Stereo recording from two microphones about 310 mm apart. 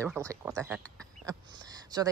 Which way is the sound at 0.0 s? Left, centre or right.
Centre.